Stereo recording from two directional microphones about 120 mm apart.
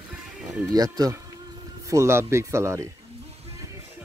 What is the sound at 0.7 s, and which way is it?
Speech, 35° right (ahead or behind).